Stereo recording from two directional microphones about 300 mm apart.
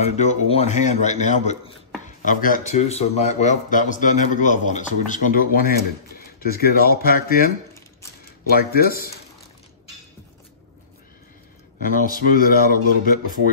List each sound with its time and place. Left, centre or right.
0.0 s a man's voice: left
11.8 s a man's voice: left